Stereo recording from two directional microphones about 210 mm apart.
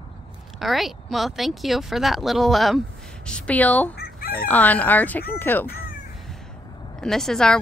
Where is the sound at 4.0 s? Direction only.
45° left (ahead or behind).